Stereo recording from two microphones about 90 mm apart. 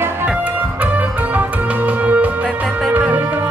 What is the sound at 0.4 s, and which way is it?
Music, 15° right (ahead or behind).